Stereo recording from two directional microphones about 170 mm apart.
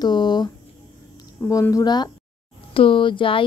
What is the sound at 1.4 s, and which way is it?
A woman's voice, 20° left (ahead or behind).